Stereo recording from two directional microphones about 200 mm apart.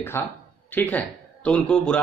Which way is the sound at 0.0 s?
10° left (ahead or behind).